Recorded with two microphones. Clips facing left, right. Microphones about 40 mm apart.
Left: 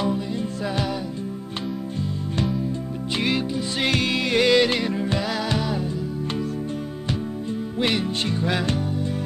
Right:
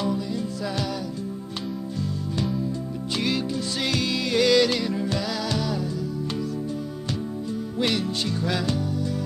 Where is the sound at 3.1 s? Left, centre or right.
Left.